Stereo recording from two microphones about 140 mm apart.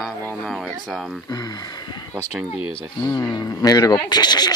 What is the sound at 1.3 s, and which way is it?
Speech, 30° left (ahead or behind).